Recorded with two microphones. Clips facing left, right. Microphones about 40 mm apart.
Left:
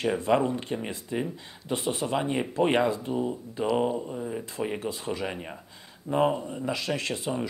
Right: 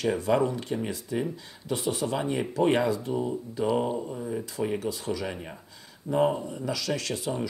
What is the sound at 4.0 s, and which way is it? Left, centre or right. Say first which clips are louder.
Speech: right 1 dB; centre.